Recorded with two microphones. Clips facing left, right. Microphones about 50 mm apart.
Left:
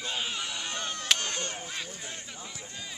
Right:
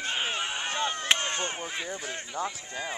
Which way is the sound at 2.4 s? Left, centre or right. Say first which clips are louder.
Right 13 dB; right.